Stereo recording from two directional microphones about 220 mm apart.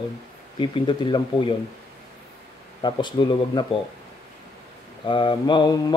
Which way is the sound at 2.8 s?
20° left (ahead or behind).